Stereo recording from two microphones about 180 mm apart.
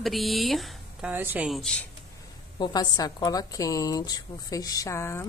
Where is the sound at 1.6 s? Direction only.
5° left (ahead or behind).